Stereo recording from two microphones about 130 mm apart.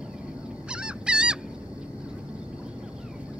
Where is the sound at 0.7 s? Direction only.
5° right (ahead or behind).